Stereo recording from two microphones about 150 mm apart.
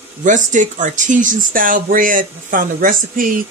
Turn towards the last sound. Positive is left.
turn(degrees=-65)  # may be behind; listen again after turning